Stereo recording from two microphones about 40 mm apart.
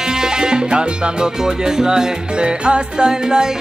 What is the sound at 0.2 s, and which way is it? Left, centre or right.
Music, centre.